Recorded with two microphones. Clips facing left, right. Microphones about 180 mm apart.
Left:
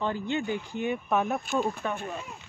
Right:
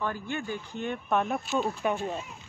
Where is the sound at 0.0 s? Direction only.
20° left (ahead or behind); by 1.4 s centre (ahead or behind).